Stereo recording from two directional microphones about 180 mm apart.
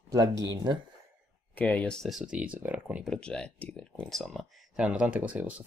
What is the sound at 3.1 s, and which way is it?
Speech, 5° left (ahead or behind).